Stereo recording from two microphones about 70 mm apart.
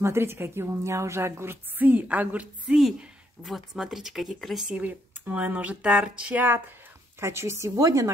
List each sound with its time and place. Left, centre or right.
0.0 s a woman's voice: right; by 2.8 s centre
3.4 s speech: centre
4.6 s speech: centre
7.2 s a woman's voice: right